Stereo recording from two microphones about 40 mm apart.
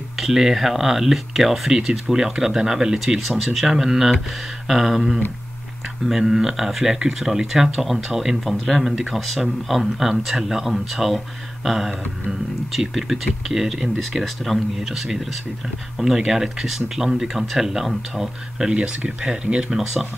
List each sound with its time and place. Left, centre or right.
0.2 s speech: centre
8.5 s speech: centre
13.9 s speech: centre
16.3 s speech: centre
18.8 s speech: right
19.8 s speech: centre